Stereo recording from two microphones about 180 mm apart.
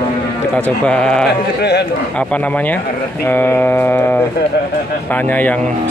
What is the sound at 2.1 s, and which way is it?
Speech, 10° left (ahead or behind).